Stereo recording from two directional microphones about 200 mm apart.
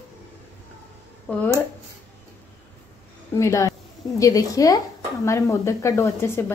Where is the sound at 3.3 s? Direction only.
15° left (ahead or behind).